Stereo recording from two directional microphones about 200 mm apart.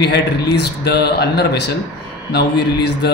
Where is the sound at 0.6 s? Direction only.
55° left (ahead or behind).